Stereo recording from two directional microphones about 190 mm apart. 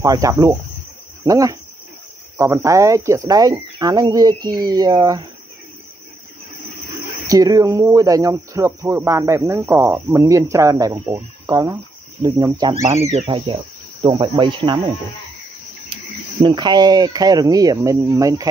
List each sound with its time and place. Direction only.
0.0 s speech: 15° right (ahead or behind)
7.2 s speech: 20° right (ahead or behind)
13.1 s speech: 25° right (ahead or behind)
16.4 s speech: 20° right (ahead or behind)